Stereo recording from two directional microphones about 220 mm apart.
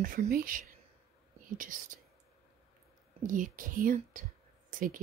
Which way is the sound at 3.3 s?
35° right (ahead or behind).